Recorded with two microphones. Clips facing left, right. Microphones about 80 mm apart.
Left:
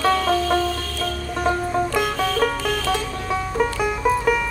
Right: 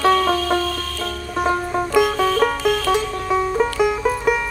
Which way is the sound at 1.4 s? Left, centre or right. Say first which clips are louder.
Even; centre.